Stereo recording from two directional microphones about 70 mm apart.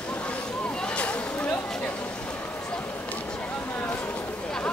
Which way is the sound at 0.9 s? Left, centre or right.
Centre.